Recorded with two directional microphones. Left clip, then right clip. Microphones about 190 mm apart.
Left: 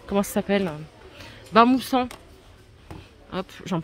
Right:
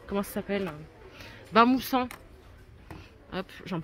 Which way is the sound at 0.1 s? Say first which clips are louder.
Left 8 dB; 15° left (ahead or behind).